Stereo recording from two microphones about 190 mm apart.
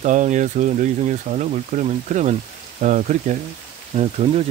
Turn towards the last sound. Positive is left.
turn(degrees=-35)  # may be behind; listen again after turning